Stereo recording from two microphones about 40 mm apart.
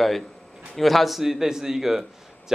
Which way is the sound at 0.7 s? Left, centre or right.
Centre.